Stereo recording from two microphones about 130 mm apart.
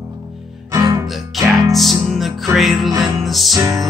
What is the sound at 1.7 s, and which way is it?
Music, centre (ahead or behind).